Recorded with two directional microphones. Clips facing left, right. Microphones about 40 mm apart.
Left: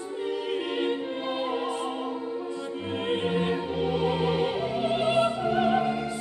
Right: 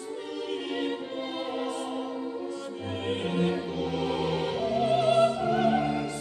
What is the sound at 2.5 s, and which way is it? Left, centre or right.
Music, left.